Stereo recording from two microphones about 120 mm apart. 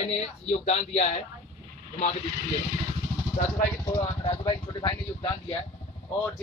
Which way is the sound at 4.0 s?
40° left (ahead or behind).